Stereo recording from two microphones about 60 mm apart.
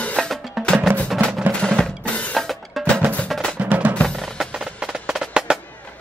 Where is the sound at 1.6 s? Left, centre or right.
Centre.